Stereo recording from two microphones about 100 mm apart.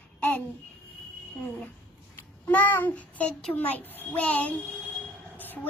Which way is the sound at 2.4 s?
20° left (ahead or behind).